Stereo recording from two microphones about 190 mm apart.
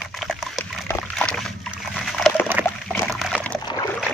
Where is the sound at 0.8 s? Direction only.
5° left (ahead or behind).